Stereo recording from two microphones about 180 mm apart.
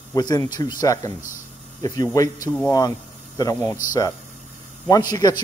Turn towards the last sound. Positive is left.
turn(degrees=20)  # may be behind; listen again after turning